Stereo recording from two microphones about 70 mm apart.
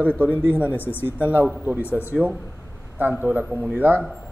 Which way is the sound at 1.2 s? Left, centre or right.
Right.